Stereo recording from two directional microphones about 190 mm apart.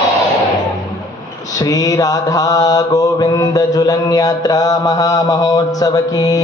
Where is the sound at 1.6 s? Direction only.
20° left (ahead or behind).